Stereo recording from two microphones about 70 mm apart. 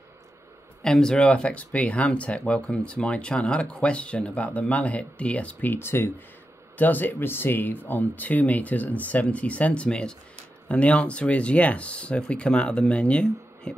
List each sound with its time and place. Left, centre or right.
0.8 s speech: centre